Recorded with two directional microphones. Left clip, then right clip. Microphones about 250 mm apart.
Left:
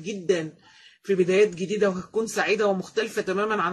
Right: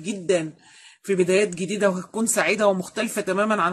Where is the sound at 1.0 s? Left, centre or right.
Right.